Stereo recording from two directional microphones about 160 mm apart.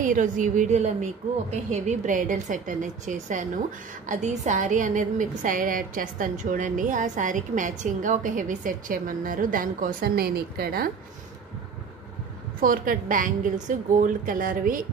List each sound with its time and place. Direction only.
0.0 s a woman's voice: 55° right (ahead or behind); by 10.9 s 70° right (ahead or behind)
12.6 s a woman's voice: 60° right (ahead or behind)